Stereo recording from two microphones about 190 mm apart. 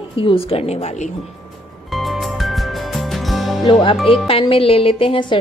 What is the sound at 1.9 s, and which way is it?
Music, centre (ahead or behind).